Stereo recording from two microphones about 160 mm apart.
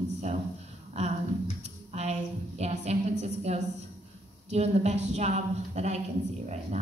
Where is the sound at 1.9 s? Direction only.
45° right (ahead or behind).